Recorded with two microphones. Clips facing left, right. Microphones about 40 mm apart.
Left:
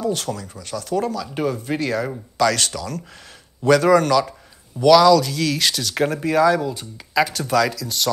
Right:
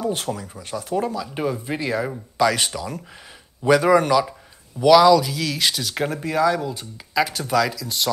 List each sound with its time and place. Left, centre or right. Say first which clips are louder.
0.0 s speech: left 1 dB; right